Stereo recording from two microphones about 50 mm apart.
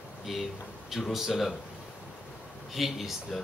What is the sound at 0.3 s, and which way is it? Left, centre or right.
Speech, centre.